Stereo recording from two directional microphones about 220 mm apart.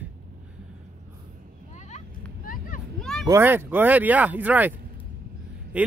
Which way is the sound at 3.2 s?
10° right (ahead or behind).